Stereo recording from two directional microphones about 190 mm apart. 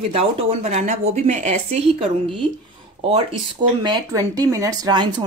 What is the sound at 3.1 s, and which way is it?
A woman's voice, 25° right (ahead or behind).